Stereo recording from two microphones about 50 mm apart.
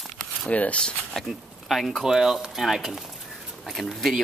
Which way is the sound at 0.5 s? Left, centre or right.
Left.